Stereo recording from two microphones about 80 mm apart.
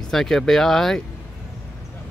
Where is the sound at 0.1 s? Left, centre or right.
Centre.